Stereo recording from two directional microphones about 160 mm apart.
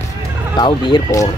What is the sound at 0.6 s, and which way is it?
Speech, 30° left (ahead or behind).